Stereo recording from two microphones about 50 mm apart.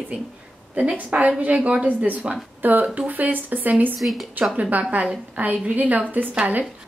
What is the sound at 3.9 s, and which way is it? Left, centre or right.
Speech, centre.